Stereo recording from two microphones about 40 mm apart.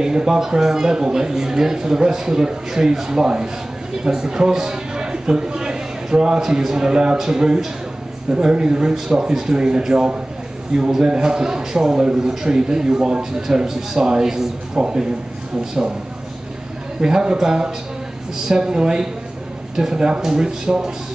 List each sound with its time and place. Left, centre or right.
0.0 s a man's voice: centre
14.8 s a man's voice: right
17.0 s a man's voice: right